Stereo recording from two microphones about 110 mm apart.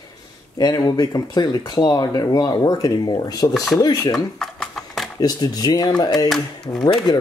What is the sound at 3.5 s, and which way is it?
Speech, centre (ahead or behind).